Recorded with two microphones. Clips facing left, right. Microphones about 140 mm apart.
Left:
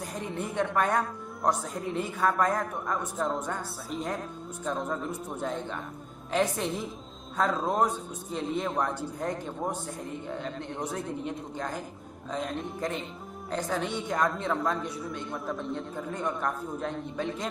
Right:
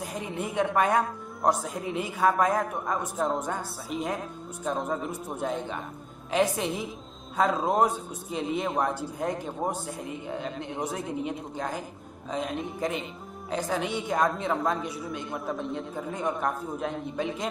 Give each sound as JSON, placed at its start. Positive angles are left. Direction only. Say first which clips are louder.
{"t": 0.0, "sound": "a woman's voice", "louder": "right 1 dB", "side_deg": -5}